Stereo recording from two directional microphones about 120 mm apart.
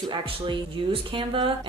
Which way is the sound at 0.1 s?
45° right (ahead or behind).